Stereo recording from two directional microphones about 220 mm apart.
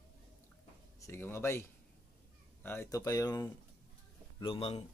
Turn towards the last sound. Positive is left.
turn(degrees=25)  # may be behind; listen again after turning